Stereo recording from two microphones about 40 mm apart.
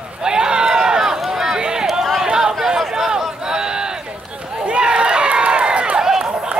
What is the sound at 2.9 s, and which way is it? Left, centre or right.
Run, centre.